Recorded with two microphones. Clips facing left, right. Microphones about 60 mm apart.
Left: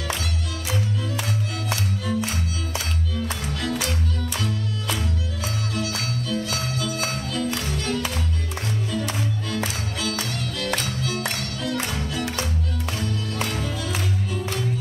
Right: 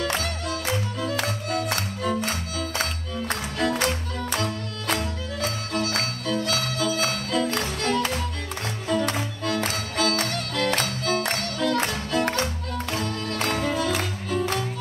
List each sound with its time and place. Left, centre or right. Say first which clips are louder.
0.0 s music: right 3 dB; right